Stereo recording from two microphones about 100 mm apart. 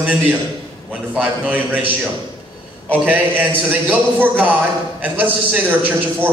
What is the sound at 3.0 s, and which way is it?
A man's voice, 15° right (ahead or behind).